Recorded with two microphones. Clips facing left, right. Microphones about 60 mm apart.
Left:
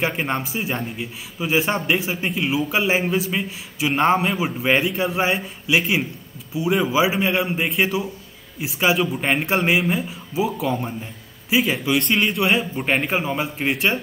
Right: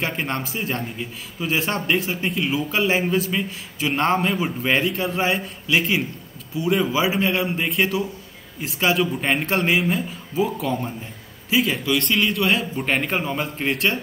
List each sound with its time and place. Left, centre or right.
0.0 s a man's voice: centre
12.5 s a man's voice: centre